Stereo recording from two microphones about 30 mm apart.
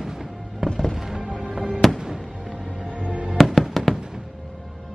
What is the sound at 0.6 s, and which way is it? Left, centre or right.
Music, right.